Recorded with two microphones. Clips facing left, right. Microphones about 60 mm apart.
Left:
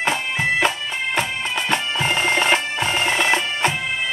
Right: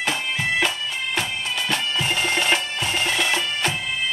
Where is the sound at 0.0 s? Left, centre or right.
Left.